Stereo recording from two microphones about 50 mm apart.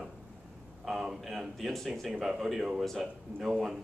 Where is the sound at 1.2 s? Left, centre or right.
Centre.